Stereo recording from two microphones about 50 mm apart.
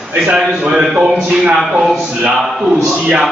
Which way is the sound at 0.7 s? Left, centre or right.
Centre.